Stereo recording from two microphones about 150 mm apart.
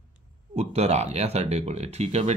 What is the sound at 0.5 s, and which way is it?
Speech, 45° right (ahead or behind).